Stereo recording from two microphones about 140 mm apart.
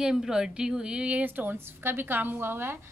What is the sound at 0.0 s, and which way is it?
A woman's voice, 5° right (ahead or behind).